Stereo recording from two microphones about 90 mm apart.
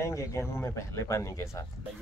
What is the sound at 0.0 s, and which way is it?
Speech, 35° left (ahead or behind).